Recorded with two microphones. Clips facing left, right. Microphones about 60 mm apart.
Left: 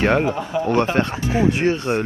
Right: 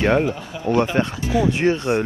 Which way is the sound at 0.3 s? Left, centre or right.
Left.